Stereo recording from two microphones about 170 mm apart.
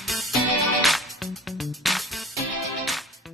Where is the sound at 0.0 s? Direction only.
Centre (ahead or behind).